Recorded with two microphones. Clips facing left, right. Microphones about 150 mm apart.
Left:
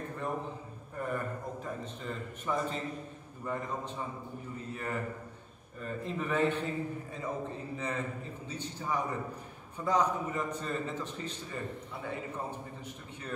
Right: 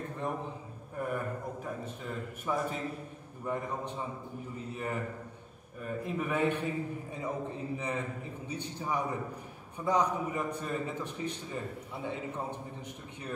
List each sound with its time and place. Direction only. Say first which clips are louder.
0.9 s a man's voice: right 1 dB; 10° right (ahead or behind)